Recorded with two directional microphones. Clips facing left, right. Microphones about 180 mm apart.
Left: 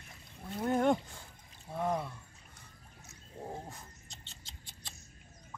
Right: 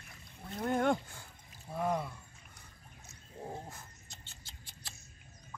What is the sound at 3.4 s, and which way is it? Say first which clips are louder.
Wild animals: left 1 dB; centre (ahead or behind).